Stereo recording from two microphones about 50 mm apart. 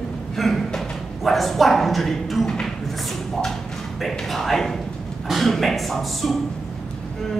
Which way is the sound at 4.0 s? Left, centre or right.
Centre.